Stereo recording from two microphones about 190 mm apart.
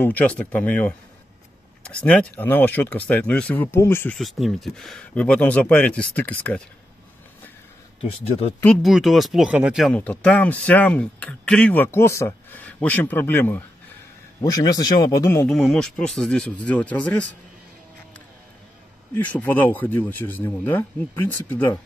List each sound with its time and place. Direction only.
0.0 s speech: 5° left (ahead or behind)
4.2 s speech: centre (ahead or behind)
8.0 s speech: 30° left (ahead or behind)
8.8 s speech: centre (ahead or behind); by 15.4 s 15° left (ahead or behind)
15.4 s speech: centre (ahead or behind)
19.1 s speech: 10° left (ahead or behind)